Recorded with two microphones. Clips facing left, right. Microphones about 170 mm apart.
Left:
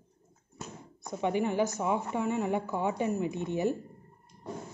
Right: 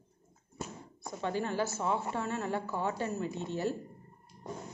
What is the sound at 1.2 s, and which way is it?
Speech, 15° left (ahead or behind).